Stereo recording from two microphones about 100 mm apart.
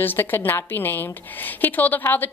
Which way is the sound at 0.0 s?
20° left (ahead or behind).